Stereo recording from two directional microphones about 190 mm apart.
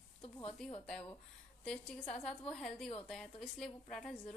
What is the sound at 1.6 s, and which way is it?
A woman's voice, 5° left (ahead or behind).